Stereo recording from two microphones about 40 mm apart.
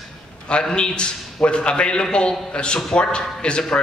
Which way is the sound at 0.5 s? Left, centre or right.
Left.